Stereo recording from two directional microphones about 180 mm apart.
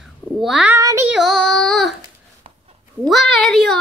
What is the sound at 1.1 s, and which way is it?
Child singing, centre (ahead or behind).